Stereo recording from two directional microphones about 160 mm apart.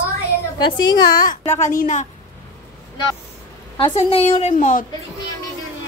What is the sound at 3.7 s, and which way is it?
A woman's voice, 35° left (ahead or behind).